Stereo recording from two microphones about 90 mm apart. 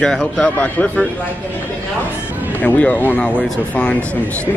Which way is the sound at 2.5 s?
20° left (ahead or behind).